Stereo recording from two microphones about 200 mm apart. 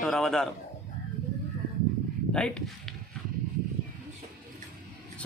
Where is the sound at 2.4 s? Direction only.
5° left (ahead or behind).